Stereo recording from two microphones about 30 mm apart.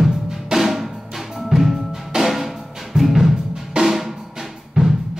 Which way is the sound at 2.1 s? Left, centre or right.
Centre.